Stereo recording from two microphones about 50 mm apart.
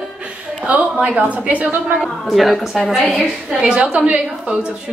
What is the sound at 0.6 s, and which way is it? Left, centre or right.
A woman's voice, right.